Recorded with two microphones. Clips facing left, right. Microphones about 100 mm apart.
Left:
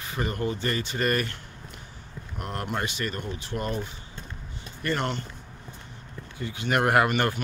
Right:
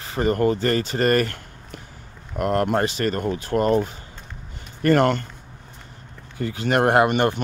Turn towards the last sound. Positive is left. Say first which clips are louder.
# right 5 dB
turn(degrees=-25)  # may be behind; listen again after turning